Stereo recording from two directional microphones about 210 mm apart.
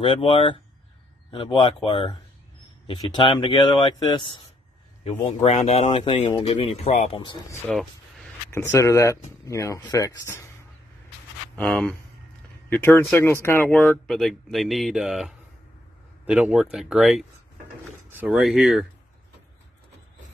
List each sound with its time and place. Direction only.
0.0 s speech: 25° left (ahead or behind)
7.6 s vehicle: centre (ahead or behind)
8.5 s speech: 10° left (ahead or behind)
11.5 s speech: 5° left (ahead or behind)